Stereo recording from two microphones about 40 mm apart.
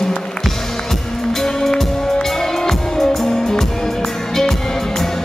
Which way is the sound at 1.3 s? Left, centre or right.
Centre.